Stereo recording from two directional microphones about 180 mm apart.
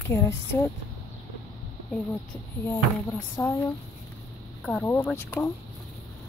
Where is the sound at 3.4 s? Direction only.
15° left (ahead or behind).